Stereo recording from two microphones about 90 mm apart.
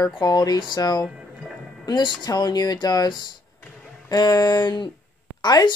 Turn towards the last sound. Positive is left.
turn(degrees=55)  # may be behind; listen again after turning